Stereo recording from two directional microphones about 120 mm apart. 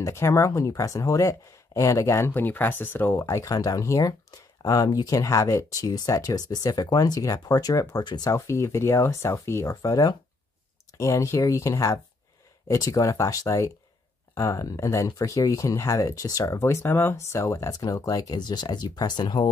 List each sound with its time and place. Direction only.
0.0 s speech: 20° left (ahead or behind)
8.3 s speech: 25° left (ahead or behind)